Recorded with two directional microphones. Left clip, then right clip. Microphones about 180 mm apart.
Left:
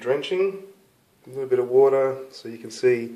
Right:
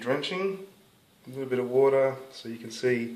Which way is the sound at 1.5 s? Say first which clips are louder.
Left 6 dB; 20° left (ahead or behind).